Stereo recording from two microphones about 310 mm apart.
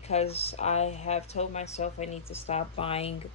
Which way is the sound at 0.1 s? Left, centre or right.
Centre.